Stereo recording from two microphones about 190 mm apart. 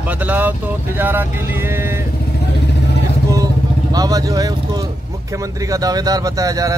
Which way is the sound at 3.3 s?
20° right (ahead or behind).